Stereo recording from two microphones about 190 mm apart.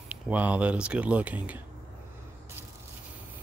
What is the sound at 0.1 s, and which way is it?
Speech, 10° right (ahead or behind).